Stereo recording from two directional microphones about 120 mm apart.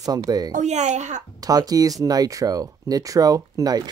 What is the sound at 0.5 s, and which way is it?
Speech, 70° right (ahead or behind).